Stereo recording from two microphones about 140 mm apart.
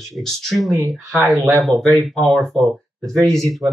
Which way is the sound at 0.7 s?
20° right (ahead or behind).